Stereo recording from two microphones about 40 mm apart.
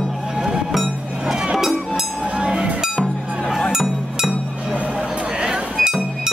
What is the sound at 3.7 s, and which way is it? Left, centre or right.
Music, centre.